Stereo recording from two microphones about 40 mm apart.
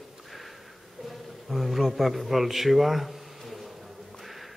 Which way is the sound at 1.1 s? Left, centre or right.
Centre.